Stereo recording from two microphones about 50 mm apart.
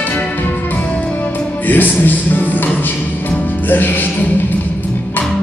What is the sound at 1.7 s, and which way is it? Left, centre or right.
Music, left.